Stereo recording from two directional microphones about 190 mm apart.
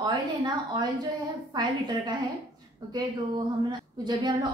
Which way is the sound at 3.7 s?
20° right (ahead or behind).